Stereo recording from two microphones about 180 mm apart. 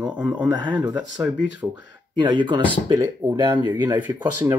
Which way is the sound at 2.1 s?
25° right (ahead or behind).